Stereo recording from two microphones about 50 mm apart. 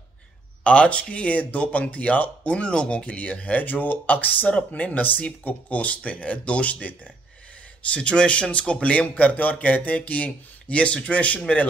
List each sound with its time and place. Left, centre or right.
0.7 s speech: left